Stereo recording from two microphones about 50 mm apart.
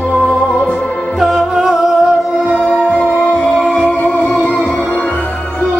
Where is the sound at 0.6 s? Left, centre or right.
Centre.